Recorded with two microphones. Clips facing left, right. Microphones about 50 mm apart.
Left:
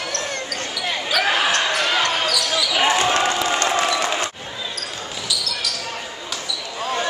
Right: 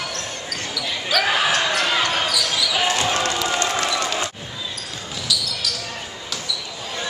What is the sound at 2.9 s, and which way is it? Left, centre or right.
Basketball bounce, left.